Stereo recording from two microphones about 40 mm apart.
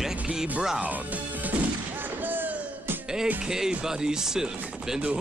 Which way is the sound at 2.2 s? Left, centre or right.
Right.